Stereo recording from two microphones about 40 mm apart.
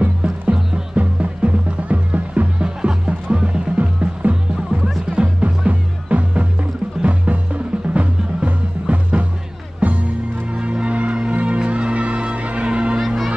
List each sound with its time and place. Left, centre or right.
0.0 s music: right
0.6 s music: centre
0.9 s music: right
2.6 s music: right
13.0 s music: centre